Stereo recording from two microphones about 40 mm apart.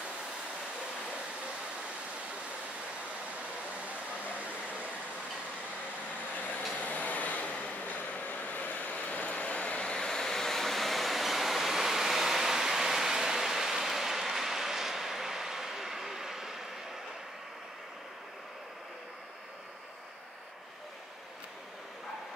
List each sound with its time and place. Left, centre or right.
6.7 s train: left
9.9 s vehicle: centre